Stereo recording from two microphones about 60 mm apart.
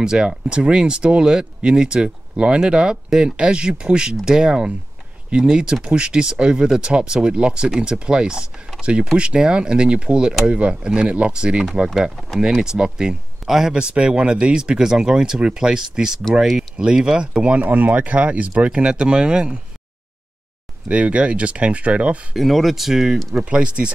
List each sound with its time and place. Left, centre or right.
0.0 s speech: centre
20.9 s speech: centre
22.3 s speech: centre
23.3 s speech: centre